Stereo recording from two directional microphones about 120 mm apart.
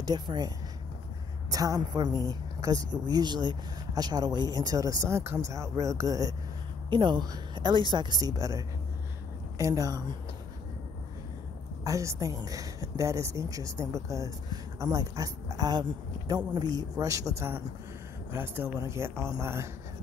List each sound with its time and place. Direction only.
0.0 s speech: 35° right (ahead or behind)
1.5 s speech: 30° right (ahead or behind)
6.9 s speech: 40° right (ahead or behind)
11.8 s a woman's voice: 25° right (ahead or behind)